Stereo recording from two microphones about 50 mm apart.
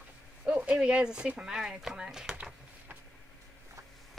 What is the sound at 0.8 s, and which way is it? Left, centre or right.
Speech, centre.